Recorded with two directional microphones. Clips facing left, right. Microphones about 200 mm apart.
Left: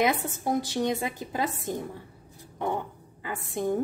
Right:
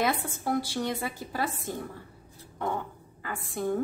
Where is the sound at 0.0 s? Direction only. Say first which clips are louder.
Left 3 dB; 20° left (ahead or behind).